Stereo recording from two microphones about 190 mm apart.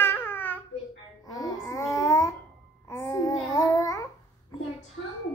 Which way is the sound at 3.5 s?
20° left (ahead or behind).